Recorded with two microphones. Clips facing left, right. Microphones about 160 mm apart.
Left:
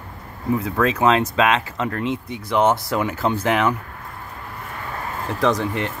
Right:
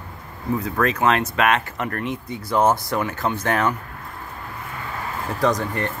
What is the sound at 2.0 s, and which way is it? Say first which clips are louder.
Speech: left 3 dB; 90° left.